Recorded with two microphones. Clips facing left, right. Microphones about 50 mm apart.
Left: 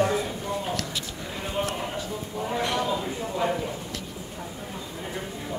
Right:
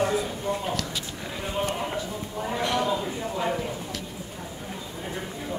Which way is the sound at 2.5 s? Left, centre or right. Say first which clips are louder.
Right 1 dB; centre.